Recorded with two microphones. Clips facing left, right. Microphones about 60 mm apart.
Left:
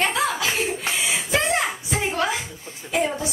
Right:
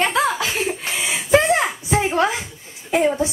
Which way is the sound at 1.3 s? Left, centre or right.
Right.